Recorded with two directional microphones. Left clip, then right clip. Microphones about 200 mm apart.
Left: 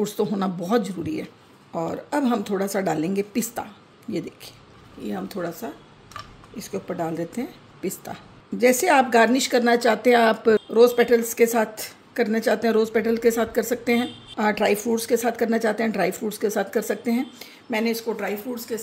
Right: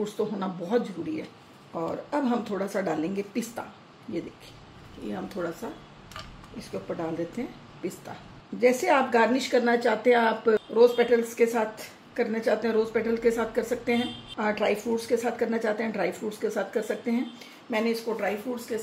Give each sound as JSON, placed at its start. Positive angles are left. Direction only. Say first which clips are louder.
{"t": 0.0, "sound": "a woman's voice", "louder": "left 5 dB", "side_deg": 50}
{"t": 5.0, "sound": "a woman's voice", "louder": "left 3 dB", "side_deg": 40}